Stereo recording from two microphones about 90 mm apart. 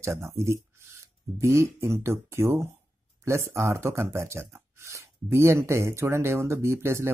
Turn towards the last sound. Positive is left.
turn(degrees=-30)  # may be behind; listen again after turning